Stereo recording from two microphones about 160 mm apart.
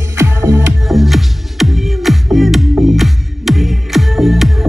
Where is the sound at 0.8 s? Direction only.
Centre (ahead or behind).